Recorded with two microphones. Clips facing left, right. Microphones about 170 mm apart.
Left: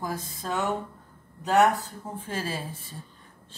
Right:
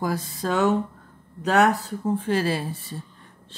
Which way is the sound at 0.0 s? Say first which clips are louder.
Right 7 dB; 90° right.